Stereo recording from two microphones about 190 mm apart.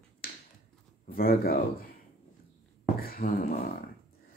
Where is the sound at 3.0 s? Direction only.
50° left (ahead or behind).